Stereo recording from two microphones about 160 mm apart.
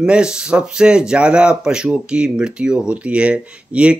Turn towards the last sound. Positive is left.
turn(degrees=-5)  # may be behind; listen again after turning